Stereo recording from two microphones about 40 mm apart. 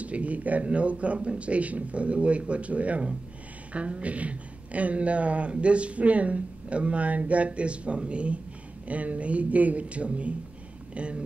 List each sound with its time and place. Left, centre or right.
0.0 s speech: right